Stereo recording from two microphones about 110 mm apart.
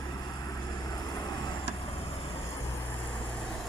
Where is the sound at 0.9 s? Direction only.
35° left (ahead or behind).